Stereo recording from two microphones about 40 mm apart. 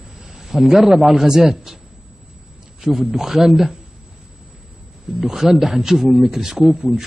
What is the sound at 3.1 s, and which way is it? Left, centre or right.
Speech, centre.